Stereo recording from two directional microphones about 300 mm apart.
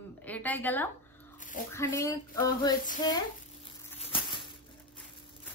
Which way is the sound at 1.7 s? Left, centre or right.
Centre.